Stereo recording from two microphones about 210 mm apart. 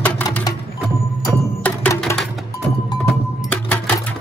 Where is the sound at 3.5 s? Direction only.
5° left (ahead or behind).